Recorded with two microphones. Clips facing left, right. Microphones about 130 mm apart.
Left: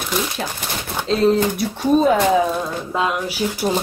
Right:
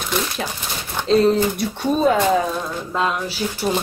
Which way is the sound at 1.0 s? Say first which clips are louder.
Right 1 dB; centre (ahead or behind).